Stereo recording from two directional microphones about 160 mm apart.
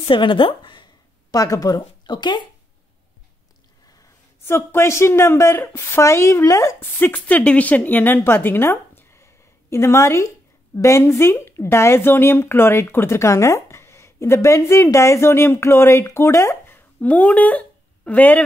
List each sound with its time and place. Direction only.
0.1 s a woman's voice: 30° left (ahead or behind)
3.9 s a man's voice: 20° left (ahead or behind)